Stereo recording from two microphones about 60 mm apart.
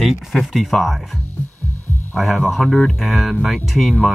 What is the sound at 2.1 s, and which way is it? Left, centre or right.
Speech, centre.